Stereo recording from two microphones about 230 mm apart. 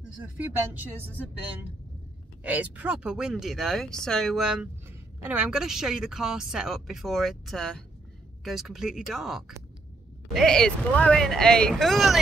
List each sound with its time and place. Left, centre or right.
0.2 s speech: centre
2.4 s speech: centre